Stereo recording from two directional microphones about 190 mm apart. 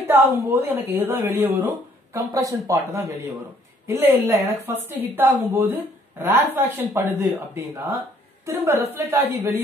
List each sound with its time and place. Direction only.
0.1 s speech: 15° right (ahead or behind)